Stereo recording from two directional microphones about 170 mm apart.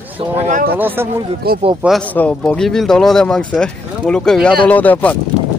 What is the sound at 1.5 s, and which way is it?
Speech, 65° right (ahead or behind).